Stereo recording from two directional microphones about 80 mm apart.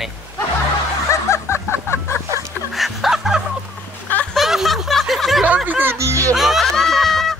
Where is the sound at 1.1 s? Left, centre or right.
Left.